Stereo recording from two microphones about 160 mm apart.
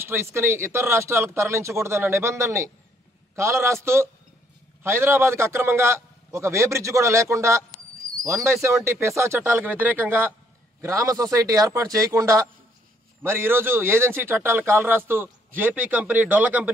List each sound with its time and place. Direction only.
0.0 s speech: 15° right (ahead or behind)